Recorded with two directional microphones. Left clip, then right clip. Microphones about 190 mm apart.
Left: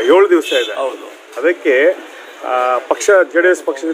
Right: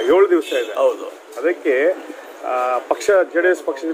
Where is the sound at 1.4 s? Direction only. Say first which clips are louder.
Left 5 dB; 40° left (ahead or behind).